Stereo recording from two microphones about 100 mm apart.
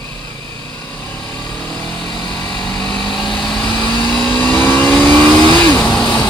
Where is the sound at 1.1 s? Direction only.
15° left (ahead or behind).